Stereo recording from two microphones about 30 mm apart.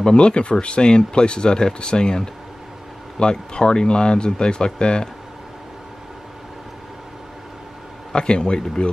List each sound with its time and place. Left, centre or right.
0.0 s speech: left
8.1 s speech: left